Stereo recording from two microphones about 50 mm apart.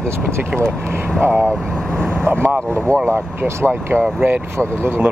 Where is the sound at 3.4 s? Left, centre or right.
Right.